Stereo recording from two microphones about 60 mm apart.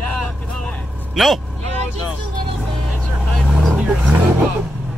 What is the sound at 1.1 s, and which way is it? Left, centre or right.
Speech, centre.